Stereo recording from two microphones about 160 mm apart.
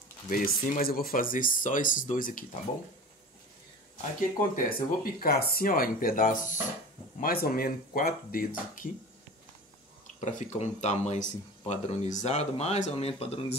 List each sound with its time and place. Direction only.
0.3 s speech: 55° left (ahead or behind)
4.6 s speech: 65° left (ahead or behind)
7.2 s speech: 65° left (ahead or behind)
10.2 s speech: 50° left (ahead or behind)